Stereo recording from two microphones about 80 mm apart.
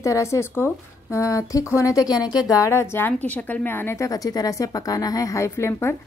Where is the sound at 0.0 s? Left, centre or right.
Left.